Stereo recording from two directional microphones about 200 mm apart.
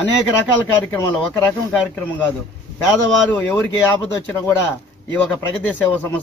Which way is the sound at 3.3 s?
10° left (ahead or behind).